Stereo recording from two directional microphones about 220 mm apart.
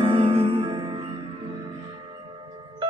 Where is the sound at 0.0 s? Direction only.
25° right (ahead or behind).